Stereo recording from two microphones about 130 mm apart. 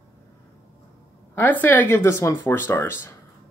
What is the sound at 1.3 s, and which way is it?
A man's voice, 15° left (ahead or behind).